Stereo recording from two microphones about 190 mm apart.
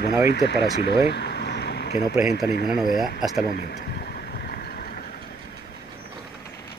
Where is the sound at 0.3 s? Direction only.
60° left (ahead or behind).